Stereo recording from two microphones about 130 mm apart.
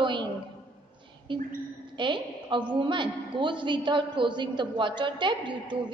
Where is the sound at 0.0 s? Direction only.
40° right (ahead or behind).